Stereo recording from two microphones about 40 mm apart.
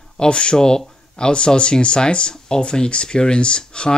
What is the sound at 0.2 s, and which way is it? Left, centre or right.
Speech, left.